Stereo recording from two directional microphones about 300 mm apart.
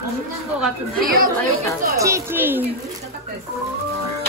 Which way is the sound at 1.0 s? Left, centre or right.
Right.